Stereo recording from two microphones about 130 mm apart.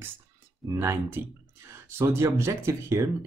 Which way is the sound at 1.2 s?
15° right (ahead or behind).